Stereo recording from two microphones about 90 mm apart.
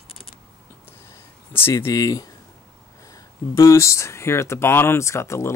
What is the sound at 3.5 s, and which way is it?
Speech, 35° left (ahead or behind).